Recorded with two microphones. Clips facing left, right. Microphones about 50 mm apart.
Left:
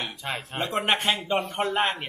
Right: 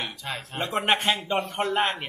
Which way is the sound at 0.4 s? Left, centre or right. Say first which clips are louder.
Right 1 dB; centre.